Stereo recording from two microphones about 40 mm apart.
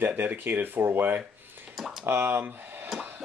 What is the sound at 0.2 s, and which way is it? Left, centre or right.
Speech, right.